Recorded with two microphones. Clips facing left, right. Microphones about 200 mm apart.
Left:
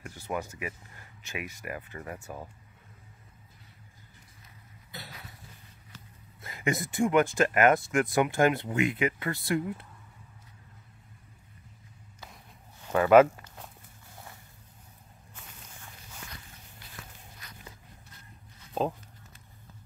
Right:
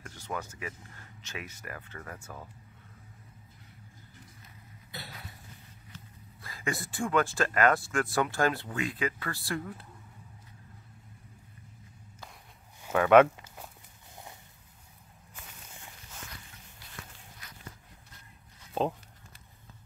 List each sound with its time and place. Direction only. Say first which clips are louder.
0.0 s speech: left 4 dB; 15° left (ahead or behind)
6.4 s speech: left 5 dB; 20° left (ahead or behind)
12.8 s speech: left 1 dB; centre (ahead or behind)